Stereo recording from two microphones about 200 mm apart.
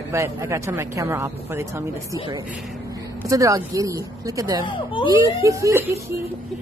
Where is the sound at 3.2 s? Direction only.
15° right (ahead or behind).